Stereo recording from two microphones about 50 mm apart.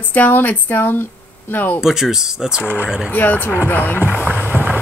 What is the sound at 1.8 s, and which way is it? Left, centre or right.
Speech, centre.